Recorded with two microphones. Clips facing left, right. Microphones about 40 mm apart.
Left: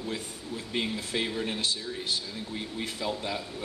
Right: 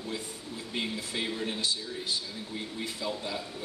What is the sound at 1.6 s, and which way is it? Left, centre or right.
Speech, left.